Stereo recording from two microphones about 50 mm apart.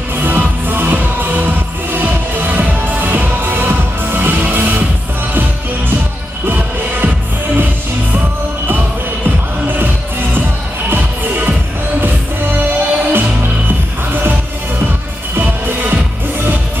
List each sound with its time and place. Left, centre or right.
0.1 s music: right
6.4 s music: right
10.9 s music: right
12.5 s music: right
15.4 s music: right